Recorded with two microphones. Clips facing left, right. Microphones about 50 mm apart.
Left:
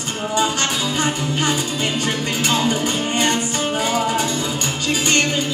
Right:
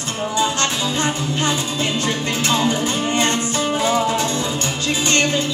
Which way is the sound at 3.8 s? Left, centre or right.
Left.